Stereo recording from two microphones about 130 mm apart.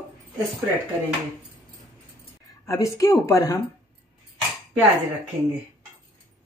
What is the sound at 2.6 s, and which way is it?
Speech, 25° left (ahead or behind).